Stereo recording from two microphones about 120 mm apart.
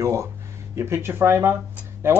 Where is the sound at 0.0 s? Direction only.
25° right (ahead or behind).